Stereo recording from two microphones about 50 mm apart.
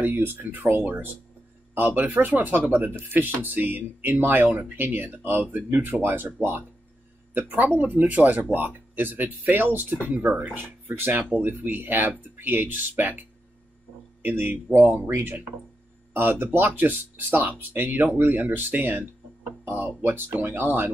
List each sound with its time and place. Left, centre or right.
0.0 s speech: right
10.6 s speech: right
14.2 s speech: right
16.1 s speech: right
19.6 s a sound: right
20.0 s speech: right